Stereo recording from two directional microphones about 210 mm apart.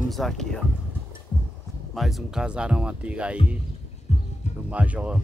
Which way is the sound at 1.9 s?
Centre (ahead or behind).